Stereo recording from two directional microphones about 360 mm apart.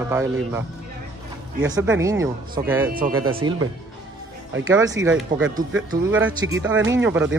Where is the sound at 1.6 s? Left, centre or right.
Centre.